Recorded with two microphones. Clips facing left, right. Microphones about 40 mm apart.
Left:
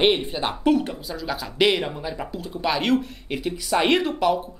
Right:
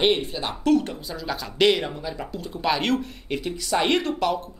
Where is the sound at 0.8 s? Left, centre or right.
Centre.